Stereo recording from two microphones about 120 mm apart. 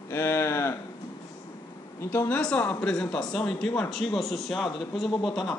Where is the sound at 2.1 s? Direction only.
20° left (ahead or behind).